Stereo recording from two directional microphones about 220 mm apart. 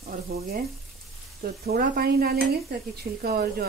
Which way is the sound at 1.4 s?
45° right (ahead or behind).